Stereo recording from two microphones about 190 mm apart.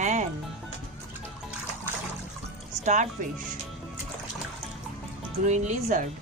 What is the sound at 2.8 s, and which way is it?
Speech, 40° right (ahead or behind).